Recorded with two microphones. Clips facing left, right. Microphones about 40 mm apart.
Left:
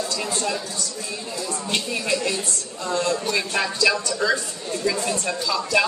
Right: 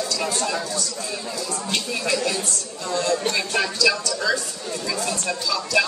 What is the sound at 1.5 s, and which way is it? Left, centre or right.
Speech, left.